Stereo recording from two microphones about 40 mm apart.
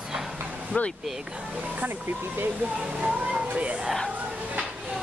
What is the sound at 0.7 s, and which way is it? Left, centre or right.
Speech, left.